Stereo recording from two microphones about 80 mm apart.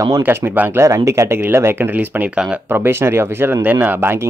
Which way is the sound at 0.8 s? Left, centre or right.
Right.